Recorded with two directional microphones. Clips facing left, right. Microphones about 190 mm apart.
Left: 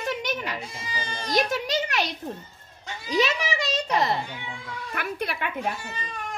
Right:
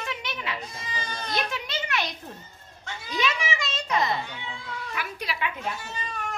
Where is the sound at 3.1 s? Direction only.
40° left (ahead or behind).